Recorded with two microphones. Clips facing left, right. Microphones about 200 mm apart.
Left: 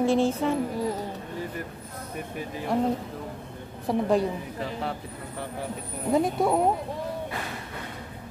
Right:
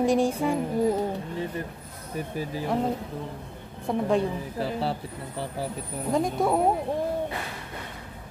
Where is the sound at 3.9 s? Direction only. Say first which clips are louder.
Left 1 dB; centre (ahead or behind).